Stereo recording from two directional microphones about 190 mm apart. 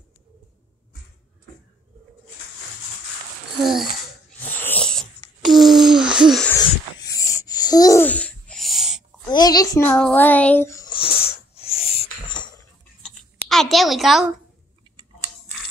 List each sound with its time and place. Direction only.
3.6 s speech: centre (ahead or behind)
4.4 s a sound: 10° left (ahead or behind)
6.4 s wheeze: 15° left (ahead or behind); by 9.0 s centre (ahead or behind)
9.2 s a child's voice: 20° left (ahead or behind)
11.1 s a sound: 30° left (ahead or behind)
13.0 s clicking: centre (ahead or behind)